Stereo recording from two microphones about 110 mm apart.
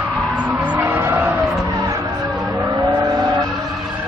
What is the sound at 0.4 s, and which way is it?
Vehicle, 15° right (ahead or behind).